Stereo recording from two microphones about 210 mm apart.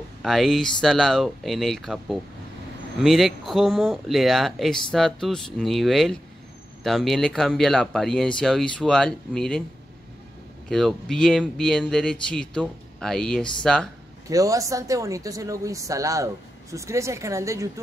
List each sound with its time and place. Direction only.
0.2 s speech: centre (ahead or behind)
10.7 s speech: centre (ahead or behind)
14.3 s speech: 15° right (ahead or behind)